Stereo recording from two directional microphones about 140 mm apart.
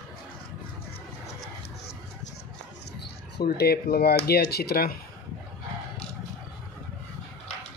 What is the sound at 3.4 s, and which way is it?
Speech, 90° left.